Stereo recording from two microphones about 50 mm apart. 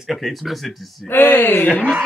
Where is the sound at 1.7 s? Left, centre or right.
Right.